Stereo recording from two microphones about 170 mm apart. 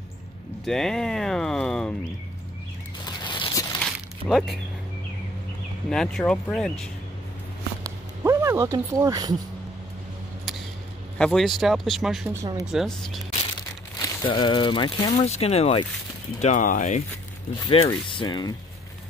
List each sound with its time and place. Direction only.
0.7 s speech: 5° left (ahead or behind)
3.1 s a sound: 25° left (ahead or behind)
3.8 s a sound: centre (ahead or behind)
5.9 s speech: 5° left (ahead or behind)
7.8 s a sound: 15° right (ahead or behind)
11.1 s speech: 5° left (ahead or behind)
14.0 s speech: 25° left (ahead or behind)
15.1 s speech: 40° left (ahead or behind)
16.3 s speech: 45° left (ahead or behind)
17.6 s speech: 25° left (ahead or behind)